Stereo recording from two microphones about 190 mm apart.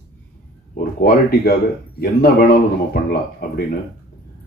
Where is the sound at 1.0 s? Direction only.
55° left (ahead or behind).